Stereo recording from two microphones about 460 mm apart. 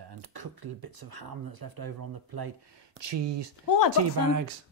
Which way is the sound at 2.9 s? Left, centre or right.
Right.